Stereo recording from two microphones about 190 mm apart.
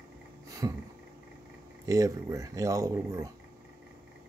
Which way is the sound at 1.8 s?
20° right (ahead or behind).